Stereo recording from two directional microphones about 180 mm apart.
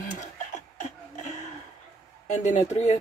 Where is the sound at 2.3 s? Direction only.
40° left (ahead or behind).